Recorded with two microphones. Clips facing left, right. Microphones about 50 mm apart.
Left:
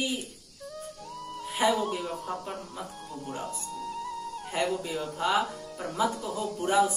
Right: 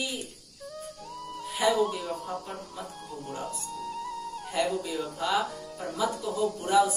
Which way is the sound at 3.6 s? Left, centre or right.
Centre.